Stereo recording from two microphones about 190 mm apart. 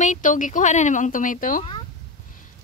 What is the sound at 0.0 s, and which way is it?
Speech, 40° left (ahead or behind).